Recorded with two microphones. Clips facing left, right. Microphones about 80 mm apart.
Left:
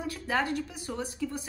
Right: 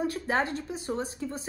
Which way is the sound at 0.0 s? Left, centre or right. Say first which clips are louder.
Right 2 dB; right.